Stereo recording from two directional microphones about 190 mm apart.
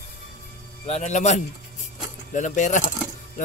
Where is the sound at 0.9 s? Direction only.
40° left (ahead or behind).